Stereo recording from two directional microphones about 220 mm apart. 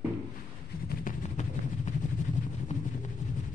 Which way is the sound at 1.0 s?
35° left (ahead or behind).